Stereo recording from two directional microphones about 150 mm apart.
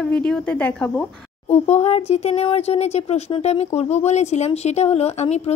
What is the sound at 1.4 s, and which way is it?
Speech, 45° left (ahead or behind).